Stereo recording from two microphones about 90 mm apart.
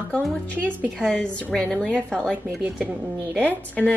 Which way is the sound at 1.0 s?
10° left (ahead or behind).